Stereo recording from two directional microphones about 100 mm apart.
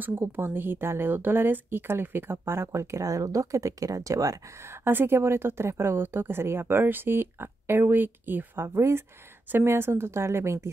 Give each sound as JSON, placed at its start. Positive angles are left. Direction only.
{"t": 0.0, "sound": "speech", "side_deg": -25}